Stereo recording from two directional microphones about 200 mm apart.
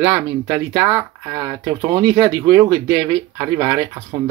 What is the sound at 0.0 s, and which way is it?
Speech, 10° right (ahead or behind).